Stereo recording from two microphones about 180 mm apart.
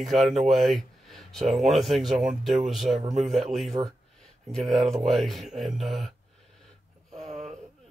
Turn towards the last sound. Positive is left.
turn(degrees=-35)  # may be behind; listen again after turning